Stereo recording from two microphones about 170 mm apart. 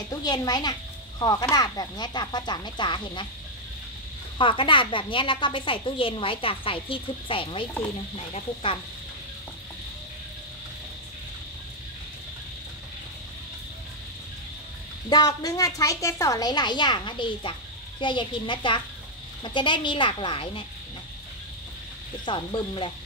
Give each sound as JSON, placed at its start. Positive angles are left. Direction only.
{"t": 0.1, "sound": "a woman's voice", "side_deg": 25}
{"t": 4.4, "sound": "a woman's voice", "side_deg": 30}
{"t": 15.0, "sound": "a woman's voice", "side_deg": 25}
{"t": 22.2, "sound": "a woman's voice", "side_deg": 30}